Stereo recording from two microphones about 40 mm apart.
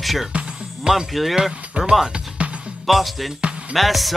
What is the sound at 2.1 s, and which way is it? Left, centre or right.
Music, right.